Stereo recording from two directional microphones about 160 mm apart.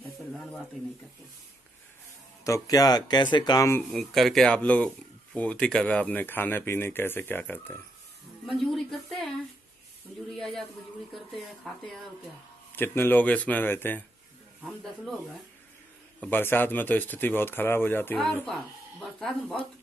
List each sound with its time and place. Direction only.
0.3 s speech: centre (ahead or behind)
2.4 s speech: 20° left (ahead or behind)
3.9 s speech: centre (ahead or behind)
8.5 s a woman's voice: centre (ahead or behind)
10.3 s a woman's voice: centre (ahead or behind)
12.7 s speech: 15° left (ahead or behind)
14.6 s a woman's voice: centre (ahead or behind)
16.2 s a woman's voice: 10° left (ahead or behind)